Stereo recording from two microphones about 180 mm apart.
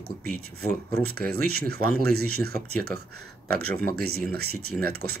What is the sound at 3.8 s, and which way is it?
Speech, 60° right (ahead or behind).